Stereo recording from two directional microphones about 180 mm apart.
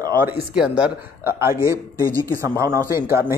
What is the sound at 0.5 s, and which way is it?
Speech, 5° right (ahead or behind).